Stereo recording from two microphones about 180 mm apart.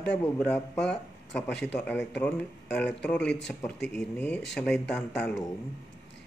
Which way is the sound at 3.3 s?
75° left (ahead or behind).